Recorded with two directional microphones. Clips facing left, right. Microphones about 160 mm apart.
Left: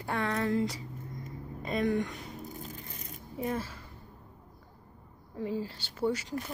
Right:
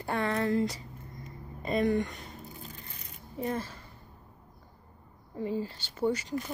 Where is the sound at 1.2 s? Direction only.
Centre (ahead or behind).